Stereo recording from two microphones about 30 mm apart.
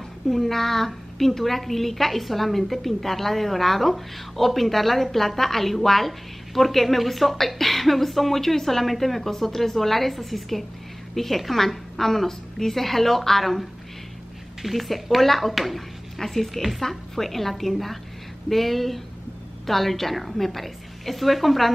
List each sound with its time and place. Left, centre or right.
0.3 s a woman's voice: centre
16.2 s a woman's voice: centre